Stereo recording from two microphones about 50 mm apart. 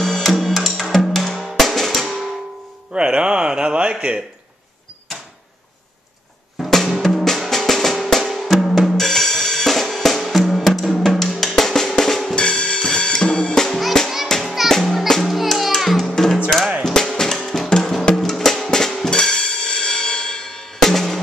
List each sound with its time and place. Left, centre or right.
0.0 s music: centre
1.4 s drum: centre
2.9 s a sound: centre
7.0 s music: centre
8.2 s drum kit: centre
12.4 s drum kit: centre
14.2 s music: centre